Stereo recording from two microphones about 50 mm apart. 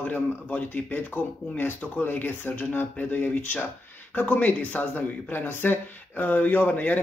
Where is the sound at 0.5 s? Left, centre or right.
Left.